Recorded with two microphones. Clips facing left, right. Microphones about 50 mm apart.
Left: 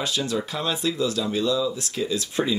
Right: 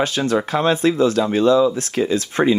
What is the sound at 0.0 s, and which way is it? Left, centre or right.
Speech, right.